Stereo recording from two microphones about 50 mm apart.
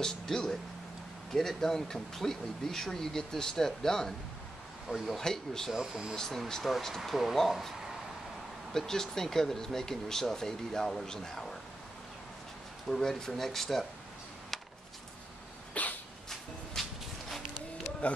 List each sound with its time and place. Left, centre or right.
0.0 s speech: centre
1.6 s speech: centre
5.2 s speech: centre
5.7 s speech: centre
6.1 s speech: centre
8.7 s speech: centre
12.9 s speech: centre
15.8 s dog: left
16.8 s a sound: centre
18.0 s speech: left